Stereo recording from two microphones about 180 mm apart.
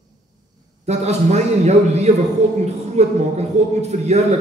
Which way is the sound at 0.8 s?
35° right (ahead or behind).